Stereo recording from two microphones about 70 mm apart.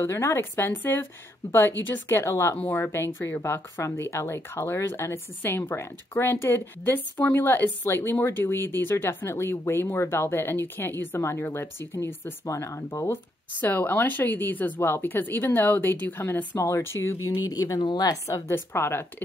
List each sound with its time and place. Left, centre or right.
0.0 s speech: left
2.5 s speech: left
12.4 s speech: left
13.6 s speech: left
17.5 s speech: left
18.0 s speech: left
18.5 s speech: left